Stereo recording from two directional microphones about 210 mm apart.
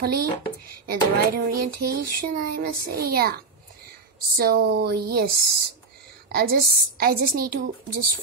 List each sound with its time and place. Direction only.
0.0 s a child's voice: 45° right (ahead or behind)
4.4 s a child's voice: 45° right (ahead or behind)